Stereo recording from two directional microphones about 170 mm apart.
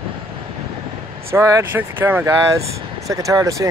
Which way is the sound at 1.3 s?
15° right (ahead or behind).